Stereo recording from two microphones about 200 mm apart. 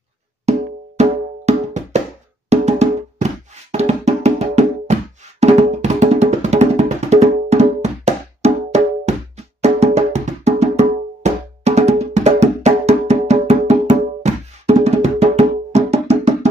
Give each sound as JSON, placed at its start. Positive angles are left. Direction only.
{"t": 0.5, "sound": "wood block", "side_deg": -35}
{"t": 2.5, "sound": "music", "side_deg": -35}